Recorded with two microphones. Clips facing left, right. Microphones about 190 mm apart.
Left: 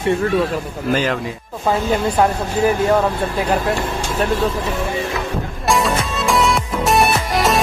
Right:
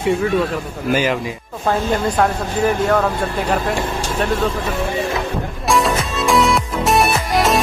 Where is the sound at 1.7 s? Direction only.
5° left (ahead or behind).